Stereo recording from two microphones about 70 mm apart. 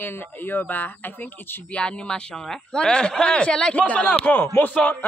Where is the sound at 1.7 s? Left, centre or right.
Centre.